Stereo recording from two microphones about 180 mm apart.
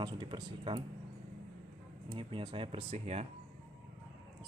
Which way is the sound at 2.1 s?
30° right (ahead or behind).